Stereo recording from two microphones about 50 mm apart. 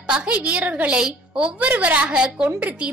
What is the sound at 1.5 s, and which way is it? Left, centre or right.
Speech, right.